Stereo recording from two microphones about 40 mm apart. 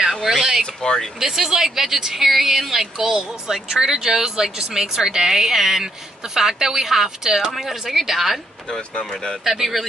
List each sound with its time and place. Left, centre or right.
0.0 s speech: centre
0.7 s speech: centre
1.2 s speech: centre
9.1 s speech: centre
9.4 s speech: centre